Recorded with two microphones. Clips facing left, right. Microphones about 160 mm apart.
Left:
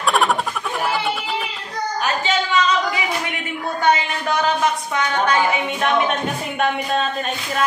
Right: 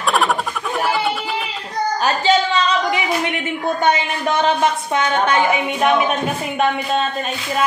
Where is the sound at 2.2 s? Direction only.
30° right (ahead or behind).